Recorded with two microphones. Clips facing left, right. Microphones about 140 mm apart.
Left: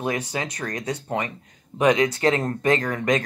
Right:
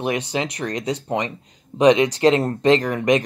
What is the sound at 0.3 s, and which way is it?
Speech, 15° right (ahead or behind).